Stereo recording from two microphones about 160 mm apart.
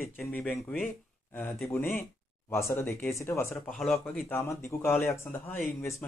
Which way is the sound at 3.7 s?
5° left (ahead or behind).